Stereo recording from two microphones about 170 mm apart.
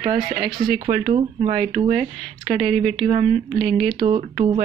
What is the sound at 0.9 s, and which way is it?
Speech, 45° right (ahead or behind).